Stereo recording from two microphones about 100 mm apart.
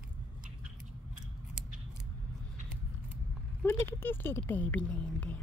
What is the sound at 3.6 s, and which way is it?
Speech, 25° left (ahead or behind).